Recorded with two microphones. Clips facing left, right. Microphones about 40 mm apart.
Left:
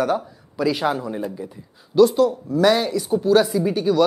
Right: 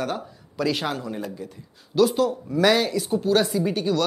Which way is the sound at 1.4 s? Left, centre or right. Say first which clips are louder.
Left 3 dB; left.